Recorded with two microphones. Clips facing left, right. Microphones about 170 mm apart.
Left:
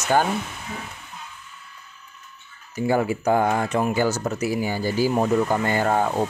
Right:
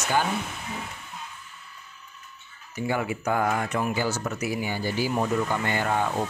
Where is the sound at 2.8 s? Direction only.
40° left (ahead or behind).